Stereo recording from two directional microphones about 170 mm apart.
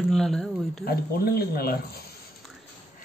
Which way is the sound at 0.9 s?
65° left (ahead or behind).